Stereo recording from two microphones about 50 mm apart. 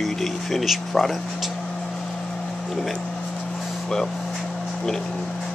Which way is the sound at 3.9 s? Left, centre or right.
Centre.